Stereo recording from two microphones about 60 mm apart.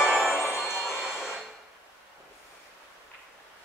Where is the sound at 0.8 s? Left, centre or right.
Centre.